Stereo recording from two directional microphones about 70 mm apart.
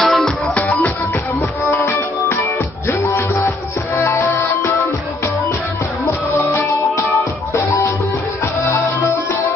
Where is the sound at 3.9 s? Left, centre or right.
Left.